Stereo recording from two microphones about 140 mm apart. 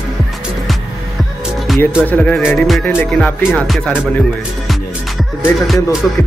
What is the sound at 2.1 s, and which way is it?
Speech, 10° left (ahead or behind).